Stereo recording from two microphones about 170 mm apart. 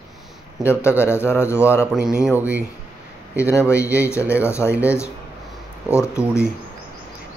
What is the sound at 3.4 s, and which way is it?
A man's voice, 15° left (ahead or behind).